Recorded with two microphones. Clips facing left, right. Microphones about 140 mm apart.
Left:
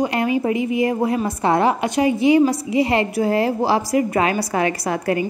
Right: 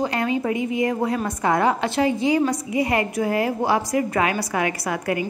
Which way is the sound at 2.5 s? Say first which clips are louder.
Left 3 dB; 25° left (ahead or behind).